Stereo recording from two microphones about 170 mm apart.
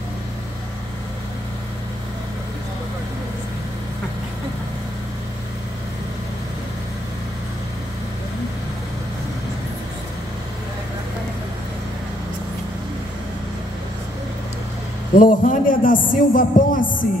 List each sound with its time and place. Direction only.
15.1 s a man's voice: 55° left (ahead or behind)